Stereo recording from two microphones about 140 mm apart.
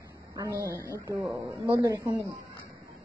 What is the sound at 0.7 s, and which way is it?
Speech, 20° left (ahead or behind).